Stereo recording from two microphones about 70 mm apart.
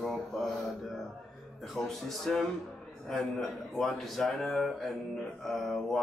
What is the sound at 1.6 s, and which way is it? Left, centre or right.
Speech, centre.